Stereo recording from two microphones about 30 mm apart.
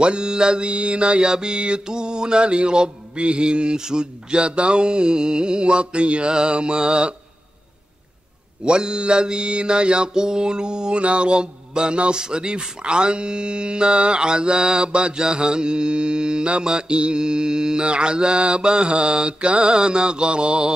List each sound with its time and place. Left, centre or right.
0.0 s mantra: right
0.7 s mantra: right
8.6 s mantra: right
11.0 s mantra: right